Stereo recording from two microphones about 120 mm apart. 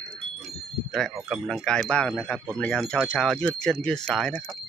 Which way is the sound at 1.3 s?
Centre (ahead or behind).